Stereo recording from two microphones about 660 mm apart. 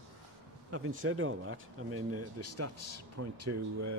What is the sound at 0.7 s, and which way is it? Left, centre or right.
Speech, centre.